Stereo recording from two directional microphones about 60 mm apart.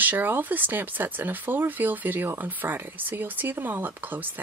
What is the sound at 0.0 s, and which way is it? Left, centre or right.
Speech, right.